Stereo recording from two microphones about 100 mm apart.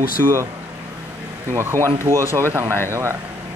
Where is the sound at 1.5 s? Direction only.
25° right (ahead or behind).